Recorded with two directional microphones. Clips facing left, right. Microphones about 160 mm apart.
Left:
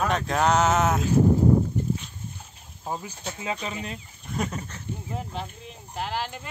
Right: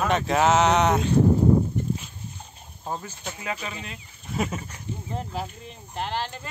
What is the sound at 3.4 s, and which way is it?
Speech, 20° left (ahead or behind).